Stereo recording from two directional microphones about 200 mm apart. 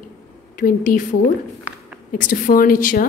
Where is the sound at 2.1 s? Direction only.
45° left (ahead or behind).